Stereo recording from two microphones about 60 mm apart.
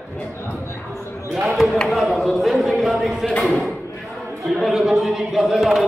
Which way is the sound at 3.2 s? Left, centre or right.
Centre.